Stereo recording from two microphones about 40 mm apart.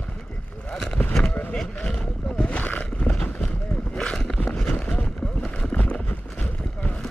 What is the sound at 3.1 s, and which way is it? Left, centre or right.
Run, left.